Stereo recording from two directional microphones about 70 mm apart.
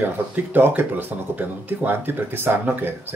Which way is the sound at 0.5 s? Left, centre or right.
Right.